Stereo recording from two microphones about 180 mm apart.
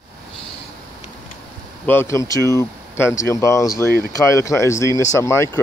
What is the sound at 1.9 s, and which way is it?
Speech, 15° left (ahead or behind).